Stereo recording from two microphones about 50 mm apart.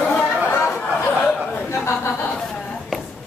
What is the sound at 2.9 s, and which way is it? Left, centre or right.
Music, centre.